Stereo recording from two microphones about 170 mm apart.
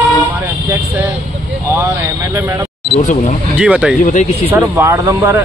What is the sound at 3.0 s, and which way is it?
Speech, 45° left (ahead or behind).